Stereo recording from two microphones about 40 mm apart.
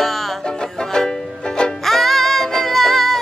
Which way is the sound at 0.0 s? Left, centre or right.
Centre.